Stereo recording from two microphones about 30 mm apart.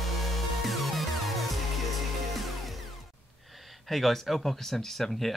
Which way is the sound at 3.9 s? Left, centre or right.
Centre.